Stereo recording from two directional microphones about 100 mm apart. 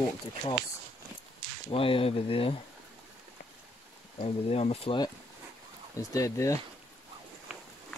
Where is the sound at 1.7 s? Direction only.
65° left (ahead or behind).